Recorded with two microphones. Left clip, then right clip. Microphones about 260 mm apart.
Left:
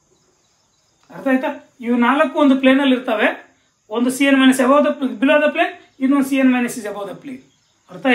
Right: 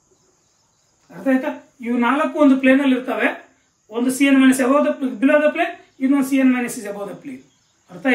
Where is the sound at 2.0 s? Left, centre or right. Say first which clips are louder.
Left 1 dB; centre.